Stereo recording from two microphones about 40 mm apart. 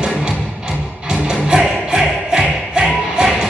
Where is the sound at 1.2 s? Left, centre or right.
Right.